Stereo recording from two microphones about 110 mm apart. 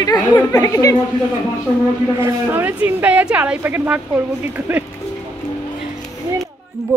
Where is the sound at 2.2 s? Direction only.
15° right (ahead or behind).